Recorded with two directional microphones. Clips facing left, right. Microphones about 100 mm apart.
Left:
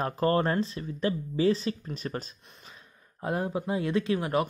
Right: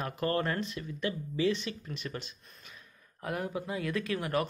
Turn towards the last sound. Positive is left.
turn(degrees=25)  # may be behind; listen again after turning